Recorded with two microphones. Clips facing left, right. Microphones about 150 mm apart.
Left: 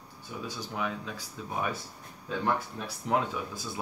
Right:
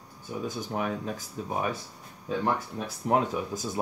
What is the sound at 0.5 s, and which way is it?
Speech, 50° right (ahead or behind).